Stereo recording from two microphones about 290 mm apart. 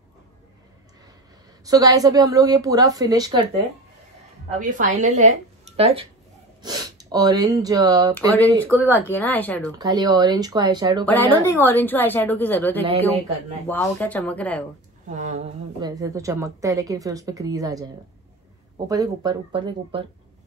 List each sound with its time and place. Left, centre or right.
1.6 s a woman's voice: centre
4.5 s a woman's voice: right
8.8 s a woman's voice: centre
9.8 s a woman's voice: centre
11.1 s a woman's voice: centre
12.8 s a man's voice: centre
13.7 s speech: centre
15.0 s a woman's voice: right
18.9 s a woman's voice: centre